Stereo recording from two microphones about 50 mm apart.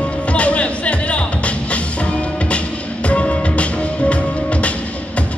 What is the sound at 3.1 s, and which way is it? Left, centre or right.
Music, left.